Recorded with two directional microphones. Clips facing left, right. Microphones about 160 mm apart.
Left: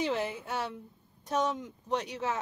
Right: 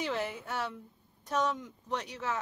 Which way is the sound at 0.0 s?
20° left (ahead or behind).